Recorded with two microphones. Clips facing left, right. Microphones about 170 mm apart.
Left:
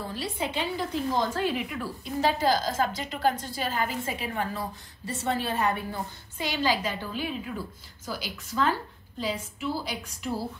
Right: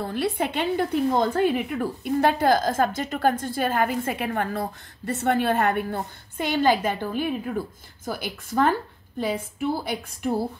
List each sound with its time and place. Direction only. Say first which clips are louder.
0.0 s a woman's voice: right 7 dB; 60° right (ahead or behind)